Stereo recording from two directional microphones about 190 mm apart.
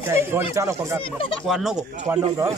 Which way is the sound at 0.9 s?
30° left (ahead or behind).